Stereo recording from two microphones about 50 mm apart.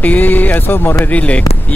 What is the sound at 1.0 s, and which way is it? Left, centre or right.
Speech, left.